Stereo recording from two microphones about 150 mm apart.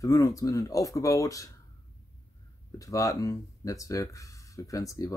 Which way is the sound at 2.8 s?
20° left (ahead or behind).